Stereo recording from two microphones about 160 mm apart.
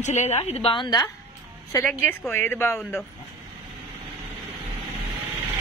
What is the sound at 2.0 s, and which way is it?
Speech, 10° left (ahead or behind).